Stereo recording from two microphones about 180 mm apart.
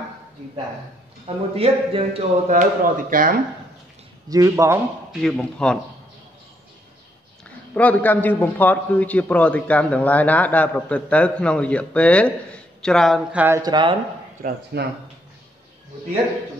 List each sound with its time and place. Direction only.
1.2 s speech: 30° right (ahead or behind); by 3.3 s 50° right (ahead or behind)
4.3 s speech: 20° right (ahead or behind)
5.2 s speech: 5° left (ahead or behind)
7.7 s a man's voice: 10° left (ahead or behind); by 13.6 s 10° right (ahead or behind)
13.6 s speech: 25° right (ahead or behind)
14.4 s speech: 65° right (ahead or behind)